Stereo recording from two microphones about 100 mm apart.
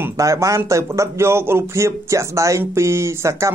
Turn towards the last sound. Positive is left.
turn(degrees=-30)  # may be behind; listen again after turning